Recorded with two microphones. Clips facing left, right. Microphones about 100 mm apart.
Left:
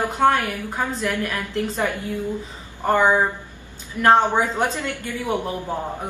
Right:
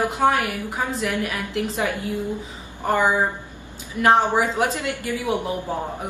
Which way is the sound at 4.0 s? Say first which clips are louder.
Left 1 dB; 10° right (ahead or behind).